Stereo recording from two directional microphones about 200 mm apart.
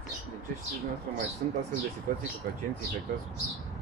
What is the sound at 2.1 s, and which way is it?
Speech, 45° right (ahead or behind).